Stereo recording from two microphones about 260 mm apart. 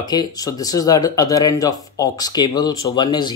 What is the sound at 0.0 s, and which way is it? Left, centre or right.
Speech, centre.